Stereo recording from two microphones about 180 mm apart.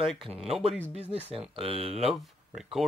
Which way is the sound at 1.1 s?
35° right (ahead or behind).